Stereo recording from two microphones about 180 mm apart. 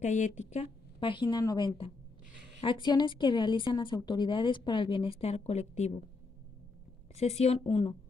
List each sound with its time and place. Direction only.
0.0 s speech: 45° left (ahead or behind)
7.2 s a woman's voice: 35° left (ahead or behind)